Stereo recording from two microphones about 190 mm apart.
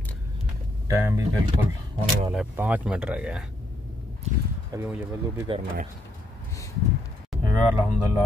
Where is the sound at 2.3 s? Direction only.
10° right (ahead or behind).